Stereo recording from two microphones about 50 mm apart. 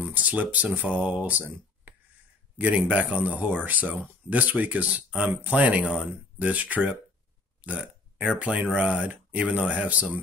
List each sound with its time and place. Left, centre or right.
0.0 s speech: right
2.5 s speech: right